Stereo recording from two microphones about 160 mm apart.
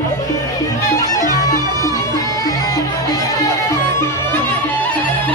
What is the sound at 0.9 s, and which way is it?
Music, 20° left (ahead or behind).